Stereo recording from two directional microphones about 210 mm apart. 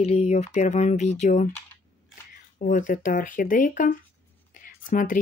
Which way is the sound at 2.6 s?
40° left (ahead or behind).